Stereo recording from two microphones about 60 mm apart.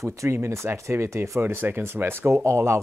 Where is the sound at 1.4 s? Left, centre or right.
Right.